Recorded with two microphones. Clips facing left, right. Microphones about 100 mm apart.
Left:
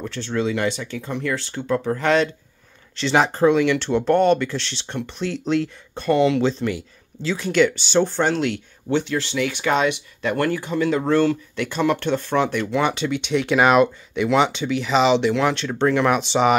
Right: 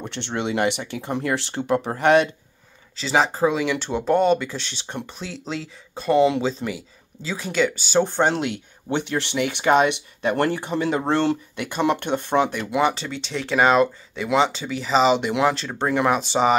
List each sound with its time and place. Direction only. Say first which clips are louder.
0.0 s speech: left 3 dB; 25° right (ahead or behind)
1.1 s speech: right 2 dB; 35° right (ahead or behind)
2.0 s speech: right 3 dB; 20° right (ahead or behind)
3.0 s speech: left 2 dB; 5° right (ahead or behind); by 11.3 s 25° right (ahead or behind)
11.5 s speech: left 1 dB; 10° right (ahead or behind)